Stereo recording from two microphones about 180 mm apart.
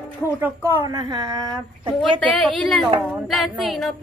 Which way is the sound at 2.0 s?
5° left (ahead or behind).